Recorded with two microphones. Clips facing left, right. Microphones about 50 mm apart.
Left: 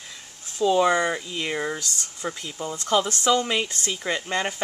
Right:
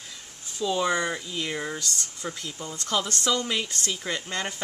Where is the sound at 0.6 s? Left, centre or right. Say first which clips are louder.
Left 6 dB; centre.